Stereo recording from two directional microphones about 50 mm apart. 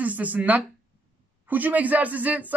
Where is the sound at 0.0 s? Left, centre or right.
Right.